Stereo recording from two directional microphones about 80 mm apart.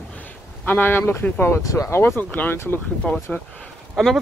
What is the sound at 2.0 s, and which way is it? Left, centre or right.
Speech, left.